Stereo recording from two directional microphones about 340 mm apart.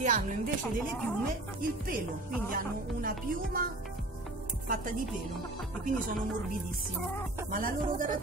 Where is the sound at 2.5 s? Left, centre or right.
Right.